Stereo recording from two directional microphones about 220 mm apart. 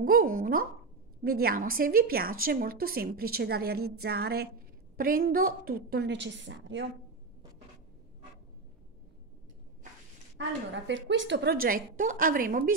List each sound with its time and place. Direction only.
0.0 s a woman's voice: 40° right (ahead or behind); by 6.9 s 55° right (ahead or behind)
10.3 s a woman's voice: 55° right (ahead or behind); by 12.7 s 40° right (ahead or behind)